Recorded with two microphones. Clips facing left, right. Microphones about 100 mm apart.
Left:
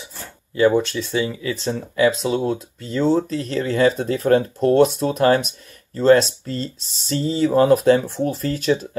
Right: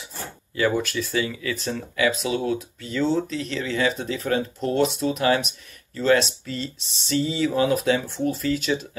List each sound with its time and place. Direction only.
0.6 s speech: 25° left (ahead or behind); by 8.8 s 40° left (ahead or behind)